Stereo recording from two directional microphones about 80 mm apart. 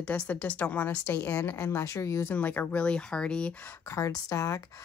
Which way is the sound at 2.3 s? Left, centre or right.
Left.